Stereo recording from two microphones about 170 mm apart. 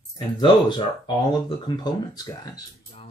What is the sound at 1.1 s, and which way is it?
Speech, 25° left (ahead or behind).